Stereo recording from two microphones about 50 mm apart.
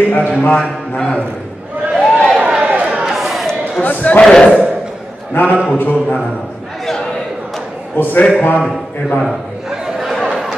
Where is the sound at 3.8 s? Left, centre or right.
Left.